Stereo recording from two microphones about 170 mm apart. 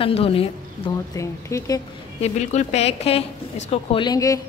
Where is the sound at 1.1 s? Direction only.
20° left (ahead or behind).